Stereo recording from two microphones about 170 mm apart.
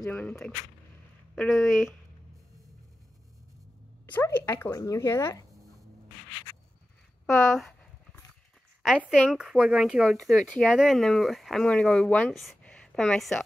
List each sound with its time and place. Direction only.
0.0 s speech: 10° left (ahead or behind)
4.0 s speech: 10° left (ahead or behind)
7.2 s speech: centre (ahead or behind)
8.8 s speech: 5° right (ahead or behind)